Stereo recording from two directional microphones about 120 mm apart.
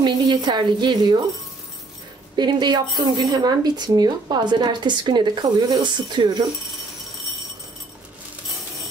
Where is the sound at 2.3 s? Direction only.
35° right (ahead or behind).